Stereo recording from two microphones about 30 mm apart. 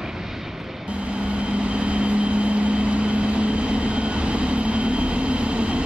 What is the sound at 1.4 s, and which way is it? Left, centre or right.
Vehicle, right.